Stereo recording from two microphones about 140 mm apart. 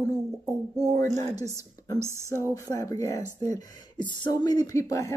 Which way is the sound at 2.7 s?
25° left (ahead or behind).